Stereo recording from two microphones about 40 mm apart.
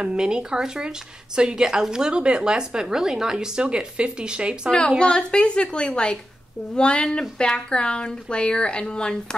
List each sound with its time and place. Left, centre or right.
0.0 s a woman's voice: right
4.6 s speech: left